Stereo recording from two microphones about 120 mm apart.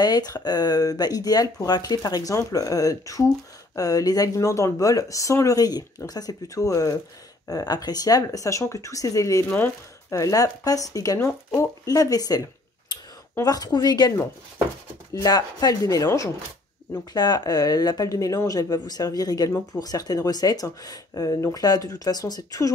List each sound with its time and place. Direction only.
0.0 s speech: 35° left (ahead or behind)
12.9 s a sound: 40° left (ahead or behind)
13.4 s speech: 30° left (ahead or behind)
15.1 s speech: 30° left (ahead or behind)